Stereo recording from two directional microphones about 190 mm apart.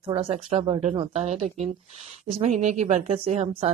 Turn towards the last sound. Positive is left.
turn(degrees=-35)  # may be behind; listen again after turning